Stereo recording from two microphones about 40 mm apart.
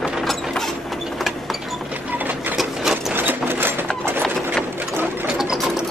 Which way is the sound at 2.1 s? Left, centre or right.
Right.